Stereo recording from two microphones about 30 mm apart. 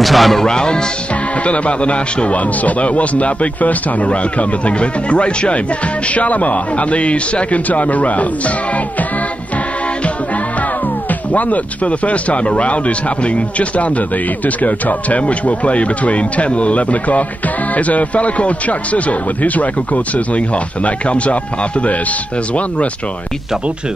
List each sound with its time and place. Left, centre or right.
0.0 s music: centre
0.4 s speech: left
1.4 s a man's voice: left
6.1 s a man's voice: left
11.3 s a man's voice: left
15.1 s a man's voice: left